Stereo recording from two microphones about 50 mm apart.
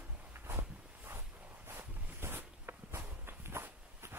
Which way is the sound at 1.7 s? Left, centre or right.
Right.